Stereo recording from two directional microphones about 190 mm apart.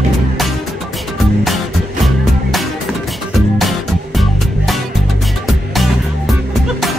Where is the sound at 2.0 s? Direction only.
Centre (ahead or behind).